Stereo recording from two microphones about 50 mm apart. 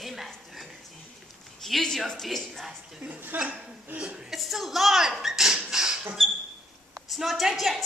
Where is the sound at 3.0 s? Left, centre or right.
Right.